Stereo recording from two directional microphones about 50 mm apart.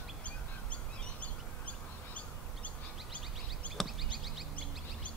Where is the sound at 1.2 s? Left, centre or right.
Left.